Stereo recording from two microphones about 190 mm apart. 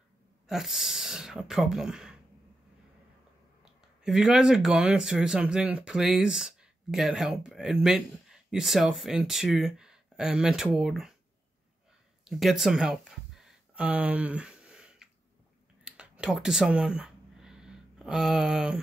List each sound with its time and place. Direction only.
0.5 s speech: centre (ahead or behind)
4.0 s speech: centre (ahead or behind)
12.3 s a sound: centre (ahead or behind)